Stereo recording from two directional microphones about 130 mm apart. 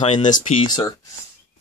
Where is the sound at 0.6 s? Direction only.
30° left (ahead or behind).